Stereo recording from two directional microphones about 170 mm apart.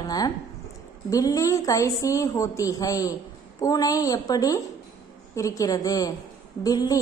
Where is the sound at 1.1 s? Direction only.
20° left (ahead or behind).